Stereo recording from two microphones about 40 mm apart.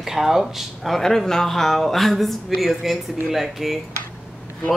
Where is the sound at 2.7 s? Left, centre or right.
Centre.